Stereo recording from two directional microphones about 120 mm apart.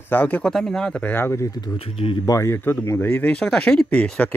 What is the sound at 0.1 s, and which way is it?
Speech, 15° left (ahead or behind).